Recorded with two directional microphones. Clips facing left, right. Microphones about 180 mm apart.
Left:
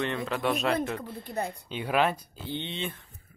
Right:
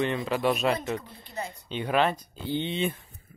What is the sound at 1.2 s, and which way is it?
Speech, 55° left (ahead or behind).